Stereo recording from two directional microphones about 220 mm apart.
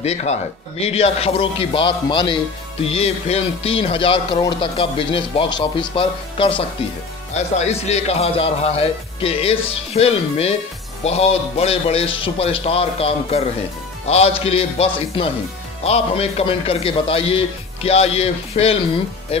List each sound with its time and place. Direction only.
0.0 s speech: 30° left (ahead or behind)